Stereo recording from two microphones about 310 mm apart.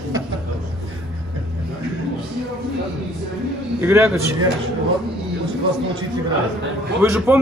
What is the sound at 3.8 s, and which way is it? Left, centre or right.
Speech, centre.